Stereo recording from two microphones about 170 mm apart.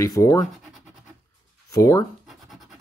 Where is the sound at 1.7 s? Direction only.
20° left (ahead or behind).